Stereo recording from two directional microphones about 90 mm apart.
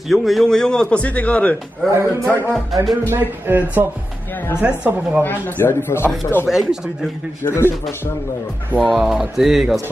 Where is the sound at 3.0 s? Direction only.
25° right (ahead or behind).